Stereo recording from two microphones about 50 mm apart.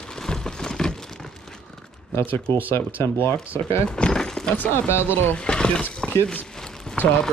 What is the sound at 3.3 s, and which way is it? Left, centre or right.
Speech, left.